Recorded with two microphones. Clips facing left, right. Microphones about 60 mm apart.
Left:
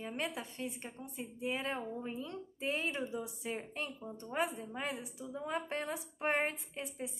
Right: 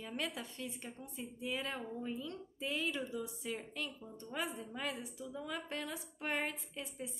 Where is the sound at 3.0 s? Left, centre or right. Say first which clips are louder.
Left 2 dB; left.